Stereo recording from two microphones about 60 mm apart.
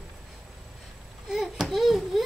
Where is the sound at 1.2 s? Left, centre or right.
Centre.